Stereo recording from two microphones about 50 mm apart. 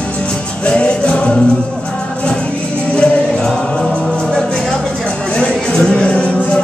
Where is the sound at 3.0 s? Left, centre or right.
Centre.